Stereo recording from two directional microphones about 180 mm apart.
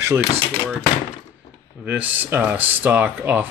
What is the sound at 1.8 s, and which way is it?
Speech, 10° right (ahead or behind).